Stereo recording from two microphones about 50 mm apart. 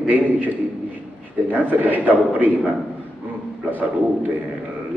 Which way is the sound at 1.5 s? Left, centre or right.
Right.